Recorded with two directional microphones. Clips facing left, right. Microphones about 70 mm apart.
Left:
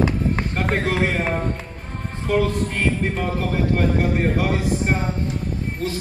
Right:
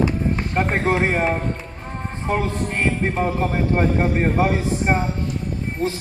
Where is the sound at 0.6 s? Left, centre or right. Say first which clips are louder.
Right 3 dB; right.